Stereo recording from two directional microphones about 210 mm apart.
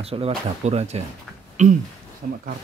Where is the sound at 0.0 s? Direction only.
30° right (ahead or behind).